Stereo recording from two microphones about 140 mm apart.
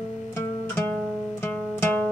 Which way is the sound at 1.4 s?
15° left (ahead or behind).